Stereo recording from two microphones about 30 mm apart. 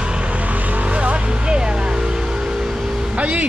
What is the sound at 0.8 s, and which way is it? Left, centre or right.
Speech, right.